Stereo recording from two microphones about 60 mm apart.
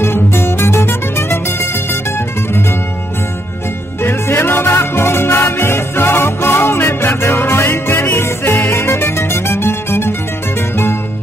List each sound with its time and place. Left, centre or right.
0.0 s music: left
4.0 s music: left